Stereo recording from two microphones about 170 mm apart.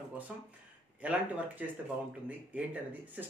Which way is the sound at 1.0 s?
10° right (ahead or behind).